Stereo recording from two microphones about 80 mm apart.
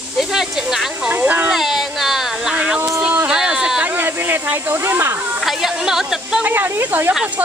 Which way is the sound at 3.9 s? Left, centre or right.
Right.